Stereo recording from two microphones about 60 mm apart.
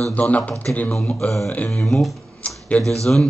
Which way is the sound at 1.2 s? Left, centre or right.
Centre.